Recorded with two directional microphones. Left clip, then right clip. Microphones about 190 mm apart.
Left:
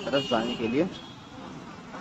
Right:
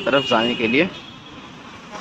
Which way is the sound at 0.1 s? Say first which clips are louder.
Right 9 dB; 5° right (ahead or behind).